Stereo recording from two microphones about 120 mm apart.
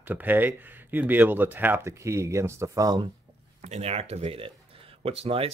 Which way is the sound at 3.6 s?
65° right (ahead or behind).